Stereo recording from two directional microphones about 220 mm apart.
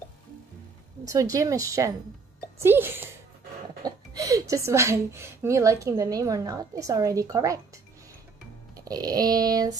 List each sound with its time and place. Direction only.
1.0 s speech: 15° right (ahead or behind)
8.8 s speech: 15° right (ahead or behind)